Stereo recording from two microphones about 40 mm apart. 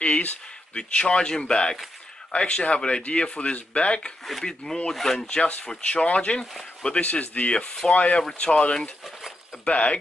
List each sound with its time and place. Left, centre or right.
0.0 s a sound: left
0.7 s speech: left
4.2 s speech: centre
4.5 s speech: centre
5.4 s speech: left